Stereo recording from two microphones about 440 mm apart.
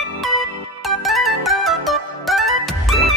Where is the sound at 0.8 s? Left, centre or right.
Centre.